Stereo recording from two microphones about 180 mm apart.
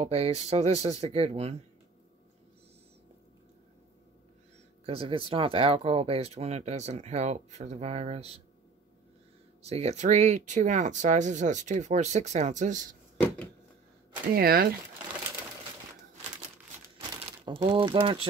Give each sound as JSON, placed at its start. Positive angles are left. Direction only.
{"t": 0.0, "sound": "speech", "side_deg": -35}
{"t": 4.8, "sound": "speech", "side_deg": -30}
{"t": 9.6, "sound": "speech", "side_deg": -35}
{"t": 14.3, "sound": "speech", "side_deg": -55}
{"t": 17.1, "sound": "speech", "side_deg": -25}